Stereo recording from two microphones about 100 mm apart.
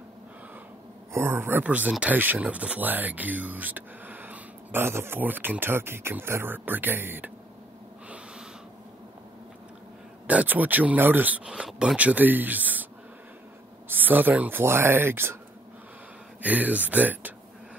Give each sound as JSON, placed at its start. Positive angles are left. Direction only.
{"t": 1.1, "sound": "speech", "side_deg": -25}
{"t": 10.2, "sound": "speech", "side_deg": -15}
{"t": 13.8, "sound": "speech", "side_deg": -20}
{"t": 16.4, "sound": "speech", "side_deg": -15}